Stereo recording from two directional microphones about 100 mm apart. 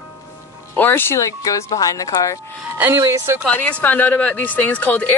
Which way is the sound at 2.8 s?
25° right (ahead or behind).